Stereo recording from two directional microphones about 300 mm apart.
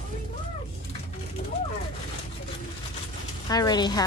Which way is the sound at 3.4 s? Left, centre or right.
Centre.